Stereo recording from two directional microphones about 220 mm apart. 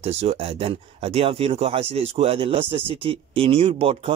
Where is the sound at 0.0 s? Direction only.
30° right (ahead or behind).